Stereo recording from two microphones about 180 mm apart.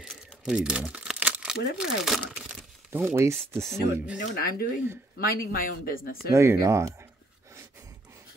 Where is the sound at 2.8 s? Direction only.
10° right (ahead or behind).